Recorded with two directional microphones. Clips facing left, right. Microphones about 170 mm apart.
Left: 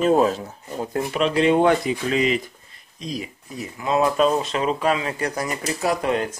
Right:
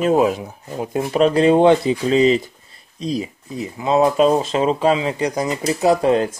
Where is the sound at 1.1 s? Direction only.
40° right (ahead or behind).